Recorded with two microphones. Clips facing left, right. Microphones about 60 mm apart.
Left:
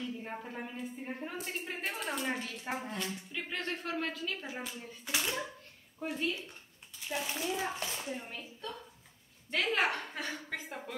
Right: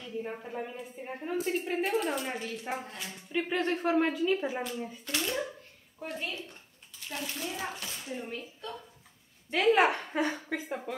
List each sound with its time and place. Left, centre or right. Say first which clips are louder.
0.2 s a woman's voice: right 4 dB; centre
3.3 s speech: right 10 dB; right
5.0 s a child's voice: even; centre
5.9 s a woman's voice: left 2 dB; centre
7.1 s a child's voice: left 1 dB; centre
7.7 s speech: left 2 dB; left
8.1 s a woman's voice: right 3 dB; centre